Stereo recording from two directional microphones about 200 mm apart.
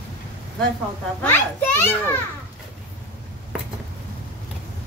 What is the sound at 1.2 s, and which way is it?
A child's voice, 10° left (ahead or behind).